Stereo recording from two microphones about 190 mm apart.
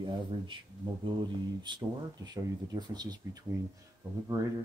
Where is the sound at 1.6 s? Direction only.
20° right (ahead or behind).